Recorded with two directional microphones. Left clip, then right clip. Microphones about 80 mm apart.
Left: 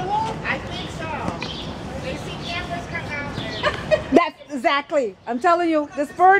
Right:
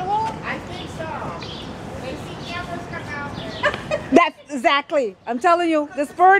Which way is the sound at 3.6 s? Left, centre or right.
Right.